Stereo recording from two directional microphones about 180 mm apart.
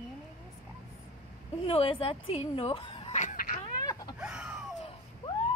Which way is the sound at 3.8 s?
20° left (ahead or behind).